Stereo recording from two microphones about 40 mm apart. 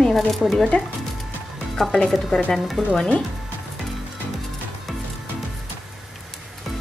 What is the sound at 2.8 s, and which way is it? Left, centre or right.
Speech, centre.